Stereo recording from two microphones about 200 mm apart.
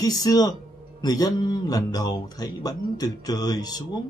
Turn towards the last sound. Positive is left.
turn(degrees=20)  # may be behind; listen again after turning